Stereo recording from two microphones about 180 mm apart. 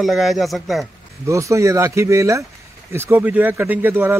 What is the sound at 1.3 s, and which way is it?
Speech, 15° right (ahead or behind).